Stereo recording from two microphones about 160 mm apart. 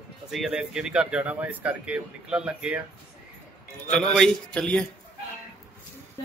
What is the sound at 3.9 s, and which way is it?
Speech, 5° left (ahead or behind).